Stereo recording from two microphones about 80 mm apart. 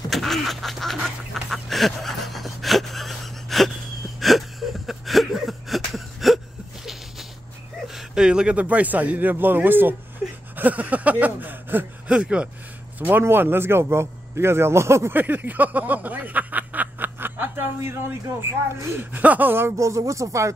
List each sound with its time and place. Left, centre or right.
0.1 s duck: centre
4.2 s a sound: centre
7.9 s a man's voice: centre; by 9.9 s right
10.5 s a sound: right
12.1 s speech: centre
13.0 s a man's voice: right
18.9 s speech: right